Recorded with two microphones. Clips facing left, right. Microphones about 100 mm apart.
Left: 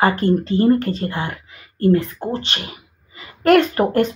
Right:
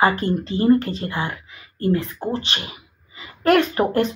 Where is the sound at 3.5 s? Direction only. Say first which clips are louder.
Left 3 dB; 40° left (ahead or behind).